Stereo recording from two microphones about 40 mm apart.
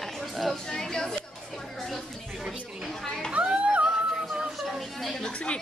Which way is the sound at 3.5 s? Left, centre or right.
Right.